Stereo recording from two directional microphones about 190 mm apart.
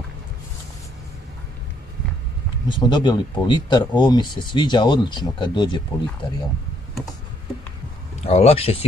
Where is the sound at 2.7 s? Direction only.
25° left (ahead or behind).